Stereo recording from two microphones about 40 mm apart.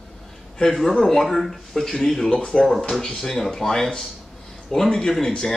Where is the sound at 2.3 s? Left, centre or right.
Left.